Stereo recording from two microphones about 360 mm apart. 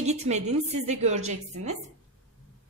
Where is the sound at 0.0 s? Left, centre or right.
Centre.